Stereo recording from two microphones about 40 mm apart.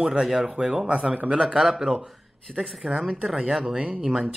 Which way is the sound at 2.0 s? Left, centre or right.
Centre.